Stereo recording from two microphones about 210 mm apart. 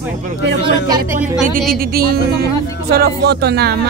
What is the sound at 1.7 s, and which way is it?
Speech, 45° right (ahead or behind).